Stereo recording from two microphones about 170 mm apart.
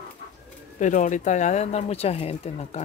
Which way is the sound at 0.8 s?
45° left (ahead or behind).